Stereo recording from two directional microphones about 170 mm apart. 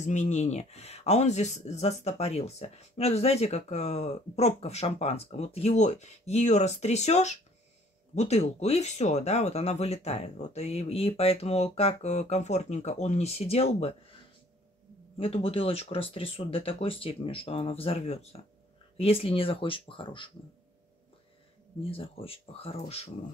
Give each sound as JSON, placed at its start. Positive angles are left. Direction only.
{"t": 0.0, "sound": "speech", "side_deg": 45}
{"t": 15.1, "sound": "speech", "side_deg": 35}
{"t": 21.8, "sound": "speech", "side_deg": 35}